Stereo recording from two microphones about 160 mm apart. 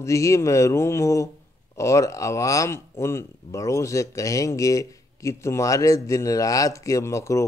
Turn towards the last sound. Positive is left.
turn(degrees=20)  # may be behind; listen again after turning